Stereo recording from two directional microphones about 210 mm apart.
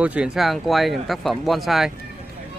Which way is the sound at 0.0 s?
5° right (ahead or behind).